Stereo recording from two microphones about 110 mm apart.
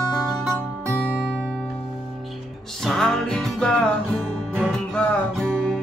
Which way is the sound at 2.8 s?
5° left (ahead or behind).